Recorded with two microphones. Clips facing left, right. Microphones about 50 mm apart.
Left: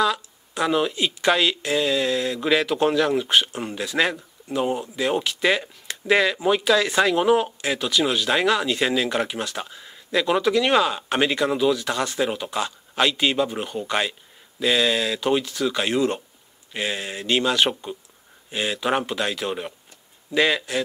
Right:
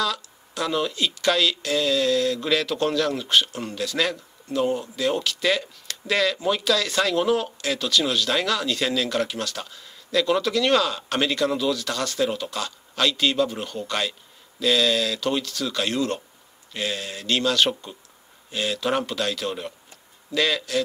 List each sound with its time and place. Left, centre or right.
0.0 s speech: left